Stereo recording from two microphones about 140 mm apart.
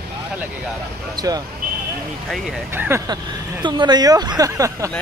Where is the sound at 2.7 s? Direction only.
15° right (ahead or behind).